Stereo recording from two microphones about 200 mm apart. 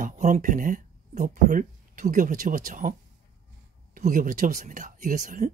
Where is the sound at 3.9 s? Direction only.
40° right (ahead or behind).